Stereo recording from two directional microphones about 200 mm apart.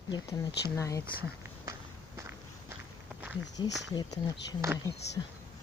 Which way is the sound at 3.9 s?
20° left (ahead or behind).